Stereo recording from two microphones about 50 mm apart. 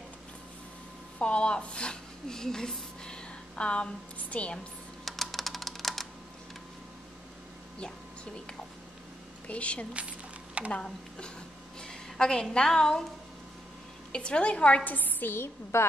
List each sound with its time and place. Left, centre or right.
1.2 s a woman's voice: left
5.0 s typing: centre
9.5 s a woman's voice: left
14.1 s a woman's voice: left
14.9 s a woman's voice: left